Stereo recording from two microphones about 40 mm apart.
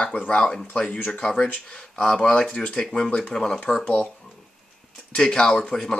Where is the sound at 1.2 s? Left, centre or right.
Left.